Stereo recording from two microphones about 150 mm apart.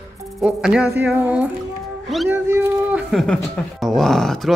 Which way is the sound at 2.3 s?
10° right (ahead or behind).